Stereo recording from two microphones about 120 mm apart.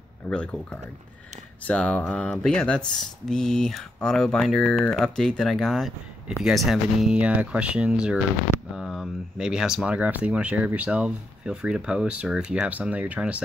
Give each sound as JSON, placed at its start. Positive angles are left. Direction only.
{"t": 0.3, "sound": "mantra", "side_deg": 10}
{"t": 2.3, "sound": "speech", "side_deg": 5}